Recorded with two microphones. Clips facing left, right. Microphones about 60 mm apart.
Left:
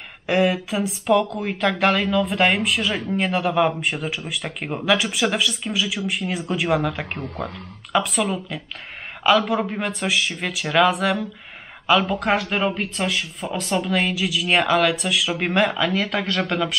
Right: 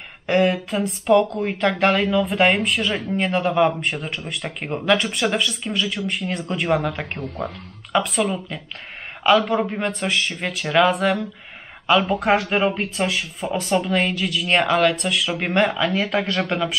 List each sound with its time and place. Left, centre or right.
0.3 s speech: centre